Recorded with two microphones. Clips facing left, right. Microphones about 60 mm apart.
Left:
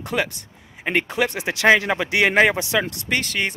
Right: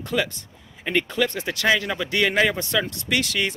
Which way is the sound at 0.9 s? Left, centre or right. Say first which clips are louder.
Left 1 dB; centre.